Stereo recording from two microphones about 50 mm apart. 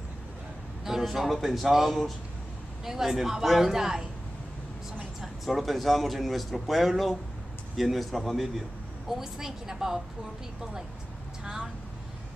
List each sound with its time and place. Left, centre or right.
0.8 s speech: centre
5.2 s speech: centre
11.4 s speech: centre